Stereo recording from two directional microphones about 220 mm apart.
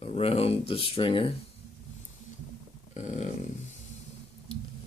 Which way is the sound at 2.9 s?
35° left (ahead or behind).